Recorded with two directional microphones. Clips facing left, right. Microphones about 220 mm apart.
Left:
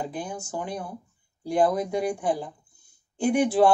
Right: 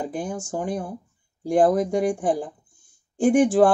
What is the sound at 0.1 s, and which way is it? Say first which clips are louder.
Speech: right 4 dB; 45° right (ahead or behind).